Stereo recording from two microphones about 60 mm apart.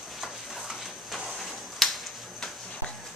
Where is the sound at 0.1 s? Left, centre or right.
Centre.